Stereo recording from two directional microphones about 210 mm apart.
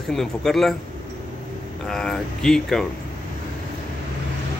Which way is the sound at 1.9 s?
Centre (ahead or behind).